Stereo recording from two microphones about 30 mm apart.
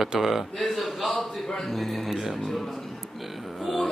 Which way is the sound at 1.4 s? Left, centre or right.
Centre.